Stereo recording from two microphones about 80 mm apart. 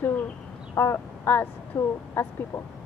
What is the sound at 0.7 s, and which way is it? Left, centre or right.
Speech, left.